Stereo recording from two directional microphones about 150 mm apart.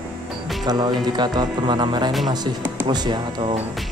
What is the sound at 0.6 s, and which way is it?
Speech, 30° right (ahead or behind).